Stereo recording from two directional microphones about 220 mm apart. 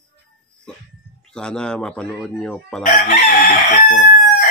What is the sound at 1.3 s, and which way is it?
Speech, 5° left (ahead or behind).